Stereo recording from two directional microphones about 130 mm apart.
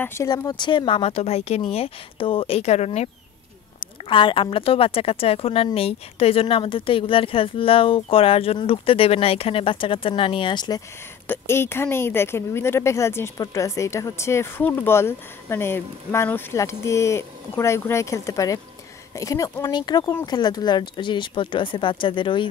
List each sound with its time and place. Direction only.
0.0 s speech: 20° left (ahead or behind)
0.3 s speech: 30° left (ahead or behind); by 3.1 s 55° left (ahead or behind)
4.0 s speech: 40° left (ahead or behind)
11.2 s speech: 20° left (ahead or behind); by 22.5 s 40° left (ahead or behind)